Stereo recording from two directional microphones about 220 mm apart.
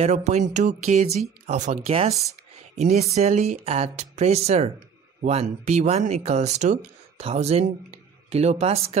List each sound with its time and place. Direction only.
0.0 s speech: 30° right (ahead or behind)